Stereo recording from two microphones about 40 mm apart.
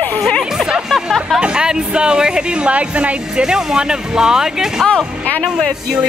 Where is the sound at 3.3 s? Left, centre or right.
Centre.